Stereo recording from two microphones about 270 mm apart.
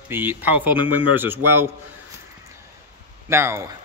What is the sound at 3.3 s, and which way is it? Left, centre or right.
Speech, centre.